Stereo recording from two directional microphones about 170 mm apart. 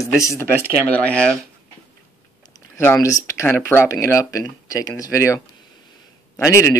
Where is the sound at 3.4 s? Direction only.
15° left (ahead or behind).